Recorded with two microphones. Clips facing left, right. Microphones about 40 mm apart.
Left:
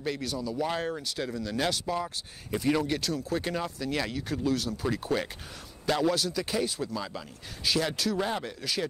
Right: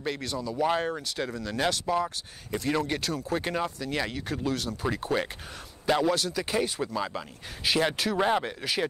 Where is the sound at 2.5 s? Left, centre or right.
Centre.